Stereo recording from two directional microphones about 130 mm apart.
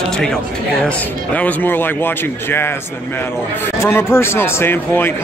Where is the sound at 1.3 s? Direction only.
15° left (ahead or behind).